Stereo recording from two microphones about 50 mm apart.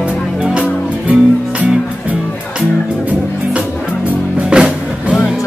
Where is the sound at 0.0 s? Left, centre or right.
Right.